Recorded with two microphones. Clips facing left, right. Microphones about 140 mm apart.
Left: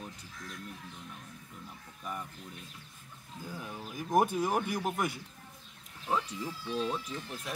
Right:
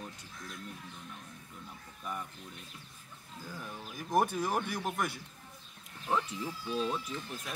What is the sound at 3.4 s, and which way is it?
Speech, 15° left (ahead or behind).